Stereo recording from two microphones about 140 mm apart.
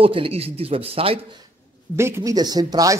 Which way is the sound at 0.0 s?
40° right (ahead or behind).